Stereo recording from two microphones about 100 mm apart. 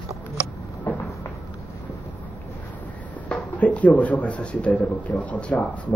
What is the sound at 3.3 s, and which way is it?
Speech, 15° left (ahead or behind).